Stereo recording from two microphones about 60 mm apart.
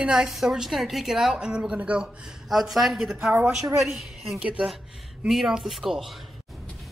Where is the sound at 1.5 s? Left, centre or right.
Centre.